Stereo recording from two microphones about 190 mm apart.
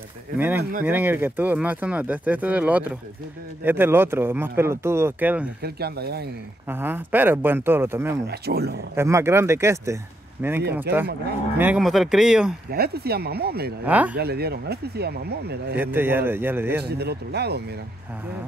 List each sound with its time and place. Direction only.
0.4 s speech: 10° right (ahead or behind)
5.6 s speech: 55° right (ahead or behind)
6.7 s speech: 10° right (ahead or behind)
8.3 s speech: 60° right (ahead or behind)
8.9 s speech: 15° right (ahead or behind)
12.7 s speech: 55° right (ahead or behind)
13.8 s speech: 10° right (ahead or behind)
14.1 s speech: 55° right (ahead or behind)
15.8 s speech: 10° right (ahead or behind)
16.8 s speech: 60° right (ahead or behind)